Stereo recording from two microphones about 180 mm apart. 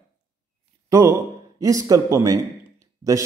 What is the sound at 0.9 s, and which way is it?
Speech, 20° right (ahead or behind).